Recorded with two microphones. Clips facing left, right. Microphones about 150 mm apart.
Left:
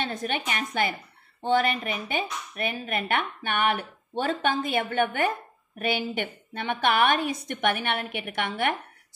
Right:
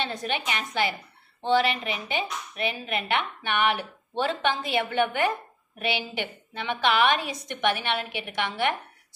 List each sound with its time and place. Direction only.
0.0 s a woman's voice: 50° left (ahead or behind)